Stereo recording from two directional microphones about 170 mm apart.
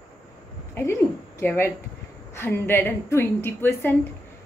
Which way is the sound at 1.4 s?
10° left (ahead or behind).